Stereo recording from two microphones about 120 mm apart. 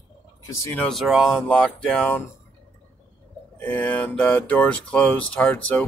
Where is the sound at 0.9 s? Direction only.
Centre (ahead or behind).